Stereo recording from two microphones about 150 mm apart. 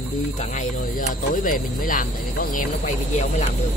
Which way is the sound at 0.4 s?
60° left (ahead or behind).